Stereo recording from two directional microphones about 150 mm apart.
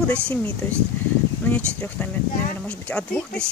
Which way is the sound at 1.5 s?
10° left (ahead or behind).